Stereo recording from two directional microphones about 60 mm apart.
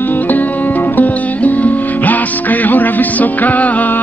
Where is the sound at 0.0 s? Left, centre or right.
Left.